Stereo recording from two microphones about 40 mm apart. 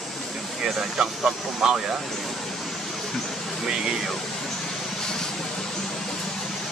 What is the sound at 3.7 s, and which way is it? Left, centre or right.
Speech, centre.